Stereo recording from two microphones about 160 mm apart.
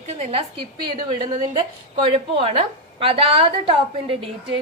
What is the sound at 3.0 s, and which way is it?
A woman's voice, 35° right (ahead or behind).